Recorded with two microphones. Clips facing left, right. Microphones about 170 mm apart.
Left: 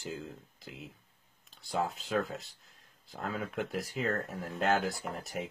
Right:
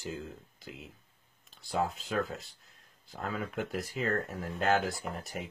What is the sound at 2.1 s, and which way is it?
Speech, centre (ahead or behind).